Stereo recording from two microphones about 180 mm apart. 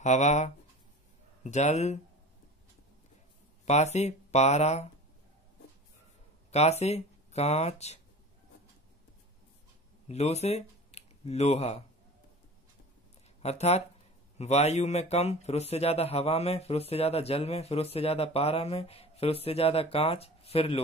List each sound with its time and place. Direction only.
0.0 s speech: 40° left (ahead or behind)
3.6 s speech: 40° left (ahead or behind)
6.5 s speech: 35° left (ahead or behind)
10.0 s speech: 35° left (ahead or behind)
13.4 s speech: 35° left (ahead or behind)